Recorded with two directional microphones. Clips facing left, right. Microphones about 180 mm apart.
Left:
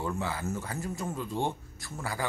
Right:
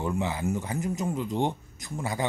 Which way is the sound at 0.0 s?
20° right (ahead or behind).